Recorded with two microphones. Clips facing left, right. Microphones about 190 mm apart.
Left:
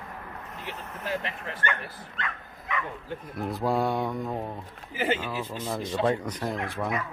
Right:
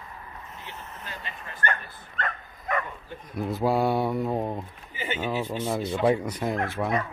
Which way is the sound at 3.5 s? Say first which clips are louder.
Right 3 dB; centre (ahead or behind).